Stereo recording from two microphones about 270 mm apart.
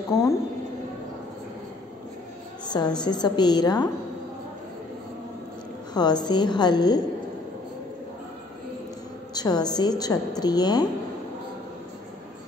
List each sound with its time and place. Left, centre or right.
0.1 s a woman's voice: centre
2.6 s a sound: centre
3.0 s a woman's voice: centre
5.9 s a woman's voice: centre
9.3 s a woman's voice: centre